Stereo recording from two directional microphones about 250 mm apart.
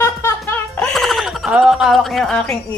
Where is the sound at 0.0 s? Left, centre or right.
Centre.